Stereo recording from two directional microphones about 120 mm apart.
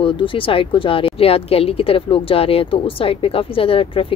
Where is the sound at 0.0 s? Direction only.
45° left (ahead or behind).